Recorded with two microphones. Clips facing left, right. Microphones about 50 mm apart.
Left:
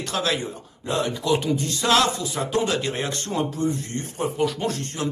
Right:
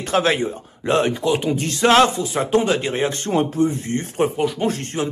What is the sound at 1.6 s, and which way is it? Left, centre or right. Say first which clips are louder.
Speech: right 7 dB; right.